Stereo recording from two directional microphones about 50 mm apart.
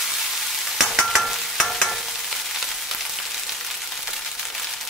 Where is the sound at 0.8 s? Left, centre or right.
Centre.